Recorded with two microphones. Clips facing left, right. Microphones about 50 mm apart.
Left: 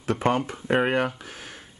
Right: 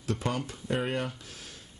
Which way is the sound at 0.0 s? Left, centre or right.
Left.